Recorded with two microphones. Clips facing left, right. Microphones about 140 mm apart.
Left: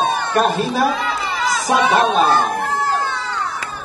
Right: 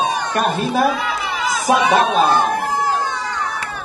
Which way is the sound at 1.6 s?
10° right (ahead or behind).